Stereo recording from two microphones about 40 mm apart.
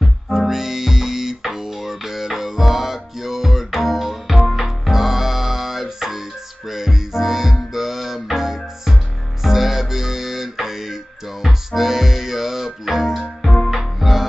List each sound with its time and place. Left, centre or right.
0.5 s music: centre